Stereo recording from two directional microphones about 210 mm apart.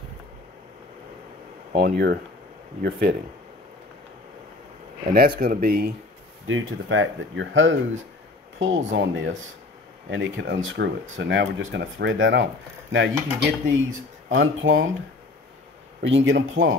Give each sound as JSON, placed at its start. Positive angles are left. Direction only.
{"t": 1.8, "sound": "speech", "side_deg": -50}
{"t": 5.1, "sound": "speech", "side_deg": -45}
{"t": 6.4, "sound": "speech", "side_deg": -70}
{"t": 16.0, "sound": "speech", "side_deg": -60}